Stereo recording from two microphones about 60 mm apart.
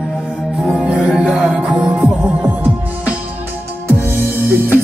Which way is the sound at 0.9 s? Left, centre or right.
Centre.